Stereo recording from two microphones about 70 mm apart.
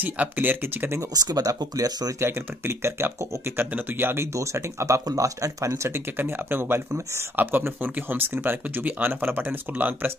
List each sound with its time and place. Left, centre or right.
0.0 s speech: right
1.1 s speech: right
2.1 s speech: right